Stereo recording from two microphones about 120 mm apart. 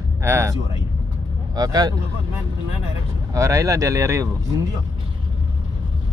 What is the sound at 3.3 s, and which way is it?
Speech, 25° right (ahead or behind).